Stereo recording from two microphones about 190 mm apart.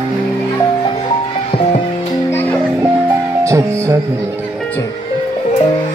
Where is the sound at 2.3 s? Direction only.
10° left (ahead or behind).